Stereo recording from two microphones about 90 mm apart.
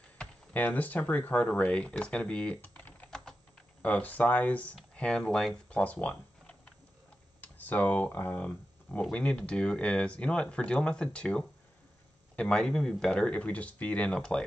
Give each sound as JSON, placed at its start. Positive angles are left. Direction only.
{"t": 0.2, "sound": "speech", "side_deg": 15}
{"t": 5.7, "sound": "computer keyboard", "side_deg": 15}
{"t": 7.4, "sound": "speech", "side_deg": 20}